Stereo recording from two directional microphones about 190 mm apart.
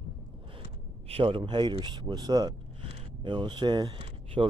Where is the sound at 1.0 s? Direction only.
30° right (ahead or behind).